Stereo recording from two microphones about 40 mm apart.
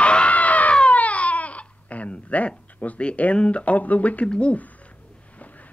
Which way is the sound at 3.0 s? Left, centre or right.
Left.